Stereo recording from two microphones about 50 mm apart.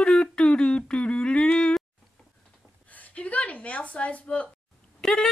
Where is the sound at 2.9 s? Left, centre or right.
Left.